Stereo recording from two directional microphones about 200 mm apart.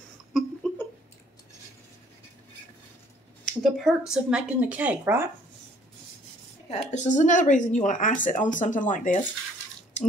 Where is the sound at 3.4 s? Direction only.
Centre (ahead or behind).